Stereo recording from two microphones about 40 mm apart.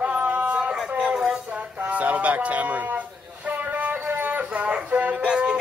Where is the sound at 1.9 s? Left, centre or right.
Right.